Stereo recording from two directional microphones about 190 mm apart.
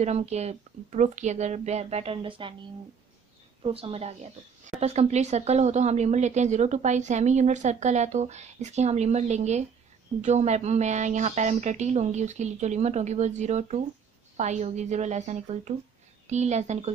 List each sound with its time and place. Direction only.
0.0 s a woman's voice: 35° right (ahead or behind)
3.6 s a woman's voice: 30° right (ahead or behind)